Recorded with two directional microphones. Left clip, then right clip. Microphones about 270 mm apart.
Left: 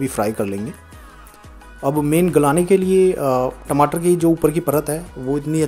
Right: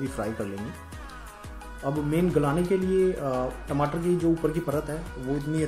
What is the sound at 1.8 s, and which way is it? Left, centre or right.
Speech, left.